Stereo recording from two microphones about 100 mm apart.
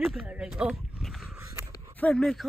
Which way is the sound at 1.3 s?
25° right (ahead or behind).